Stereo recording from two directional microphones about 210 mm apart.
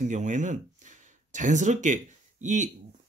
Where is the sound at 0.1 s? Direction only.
35° right (ahead or behind).